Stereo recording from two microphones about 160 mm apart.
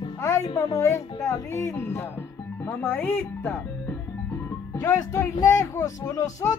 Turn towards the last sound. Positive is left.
turn(degrees=20)  # may be behind; listen again after turning